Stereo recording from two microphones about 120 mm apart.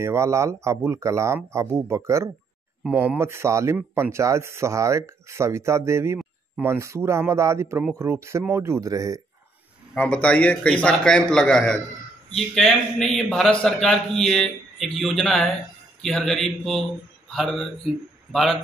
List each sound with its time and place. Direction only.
0.0 s speech: 25° right (ahead or behind)
2.8 s speech: 15° right (ahead or behind)
9.9 s a man's voice: 10° left (ahead or behind)